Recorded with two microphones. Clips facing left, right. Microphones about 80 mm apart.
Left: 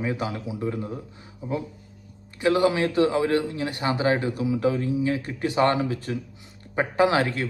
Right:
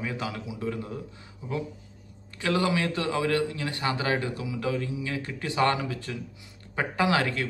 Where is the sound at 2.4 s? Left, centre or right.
Left.